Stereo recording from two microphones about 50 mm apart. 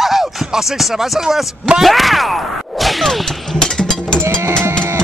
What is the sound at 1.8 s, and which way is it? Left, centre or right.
Speech, centre.